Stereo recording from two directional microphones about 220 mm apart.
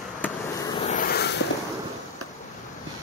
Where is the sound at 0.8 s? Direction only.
35° left (ahead or behind).